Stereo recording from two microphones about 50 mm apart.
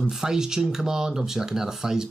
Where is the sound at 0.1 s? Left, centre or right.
Centre.